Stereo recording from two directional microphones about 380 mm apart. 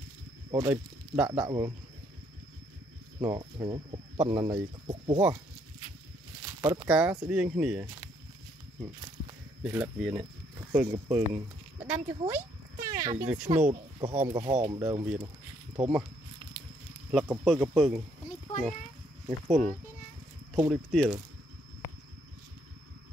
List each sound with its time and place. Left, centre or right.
0.5 s speech: centre
3.2 s speech: centre
6.4 s speech: centre
9.6 s speech: centre
13.6 s speech: centre
17.1 s speech: centre
19.2 s speech: centre